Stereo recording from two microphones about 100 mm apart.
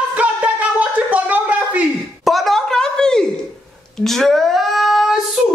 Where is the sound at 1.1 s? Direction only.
15° right (ahead or behind).